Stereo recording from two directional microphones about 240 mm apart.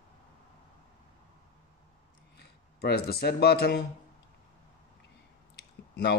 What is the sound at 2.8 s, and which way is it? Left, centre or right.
Speech, left.